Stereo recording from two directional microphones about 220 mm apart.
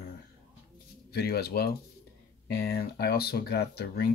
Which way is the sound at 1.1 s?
45° left (ahead or behind).